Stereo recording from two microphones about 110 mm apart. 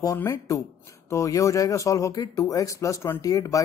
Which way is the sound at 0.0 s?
30° left (ahead or behind).